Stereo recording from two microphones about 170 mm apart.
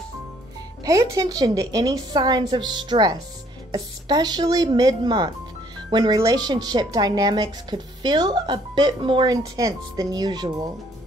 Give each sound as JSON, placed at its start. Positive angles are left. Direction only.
{"t": 0.8, "sound": "speech", "side_deg": -20}